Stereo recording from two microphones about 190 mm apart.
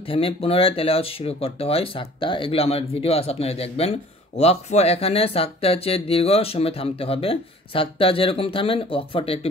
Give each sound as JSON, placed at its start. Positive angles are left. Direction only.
{"t": 0.0, "sound": "speech", "side_deg": 30}